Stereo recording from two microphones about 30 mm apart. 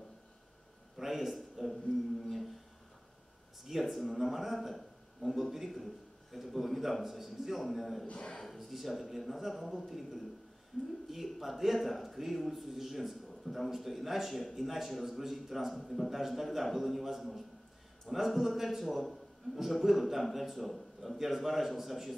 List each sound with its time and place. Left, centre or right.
0.9 s a sound: centre
1.3 s a man's voice: centre
3.8 s a man's voice: centre
8.1 s a man's voice: left
8.5 s a man's voice: centre